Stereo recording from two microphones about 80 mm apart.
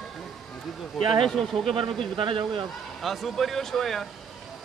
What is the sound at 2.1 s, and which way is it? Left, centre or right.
Speech, right.